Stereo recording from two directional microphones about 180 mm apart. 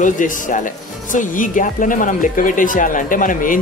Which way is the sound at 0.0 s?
45° left (ahead or behind).